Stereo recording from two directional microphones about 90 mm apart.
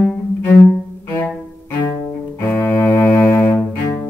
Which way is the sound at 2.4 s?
25° left (ahead or behind).